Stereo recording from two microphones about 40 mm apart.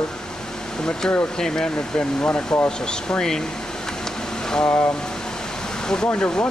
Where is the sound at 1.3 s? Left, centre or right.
Centre.